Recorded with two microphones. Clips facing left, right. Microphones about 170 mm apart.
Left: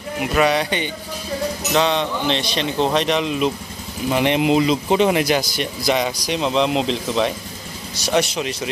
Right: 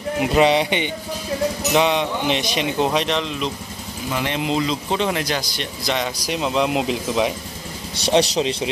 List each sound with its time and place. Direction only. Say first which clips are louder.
0.2 s speech: right 2 dB; 20° right (ahead or behind); by 3.2 s 5° right (ahead or behind)
3.2 s speech: left 5 dB; 10° left (ahead or behind)
4.1 s speech: left 6 dB; 20° left (ahead or behind); by 7.3 s 10° right (ahead or behind)
8.0 s speech: right 2 dB; 30° right (ahead or behind)